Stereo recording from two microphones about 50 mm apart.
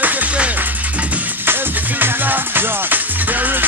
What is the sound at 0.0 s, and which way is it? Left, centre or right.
Music, right.